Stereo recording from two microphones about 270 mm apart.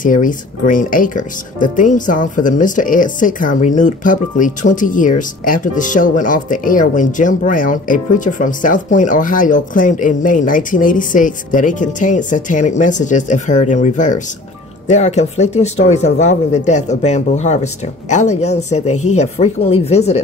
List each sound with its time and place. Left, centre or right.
0.0 s speech: left